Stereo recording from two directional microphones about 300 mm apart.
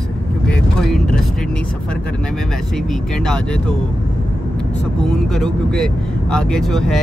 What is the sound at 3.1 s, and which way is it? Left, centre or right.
Speech, centre.